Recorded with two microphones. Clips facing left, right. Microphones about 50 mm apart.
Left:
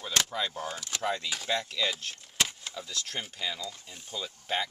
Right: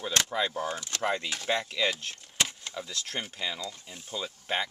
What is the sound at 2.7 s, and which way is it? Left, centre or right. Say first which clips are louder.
Speech: right 1 dB; centre.